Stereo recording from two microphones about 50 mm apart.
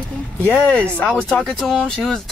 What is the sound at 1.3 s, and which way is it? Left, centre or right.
Speech, centre.